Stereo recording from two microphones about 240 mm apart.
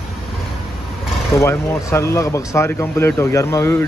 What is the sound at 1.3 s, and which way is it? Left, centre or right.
Speech, centre.